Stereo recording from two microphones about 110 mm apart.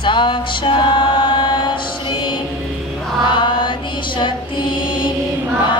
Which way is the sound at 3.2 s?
45° left (ahead or behind).